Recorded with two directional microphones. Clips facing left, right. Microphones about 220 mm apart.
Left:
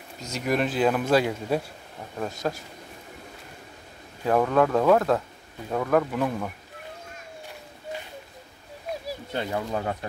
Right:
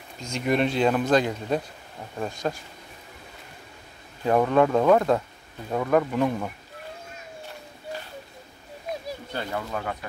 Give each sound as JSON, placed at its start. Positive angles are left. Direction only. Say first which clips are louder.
{"t": 0.3, "sound": "speech", "louder": "right 2 dB", "side_deg": 5}
{"t": 4.2, "sound": "speech", "louder": "right 1 dB", "side_deg": 0}
{"t": 9.3, "sound": "speech", "louder": "left 3 dB", "side_deg": 15}